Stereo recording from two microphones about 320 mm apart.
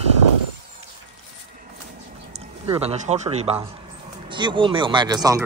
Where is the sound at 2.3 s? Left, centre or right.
Centre.